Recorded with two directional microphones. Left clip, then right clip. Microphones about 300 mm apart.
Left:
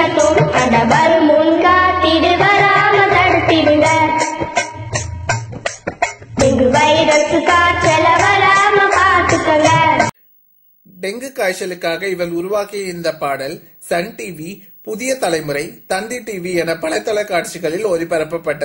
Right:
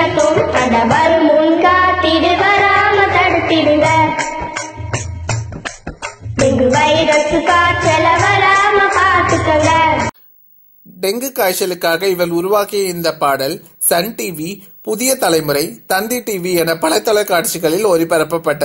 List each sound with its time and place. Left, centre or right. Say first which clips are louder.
0.0 s music: even; centre
6.4 s music: even; centre
11.0 s a man's voice: right 4 dB; centre